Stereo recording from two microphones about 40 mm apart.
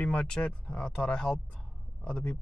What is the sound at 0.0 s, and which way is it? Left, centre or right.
Speech, left.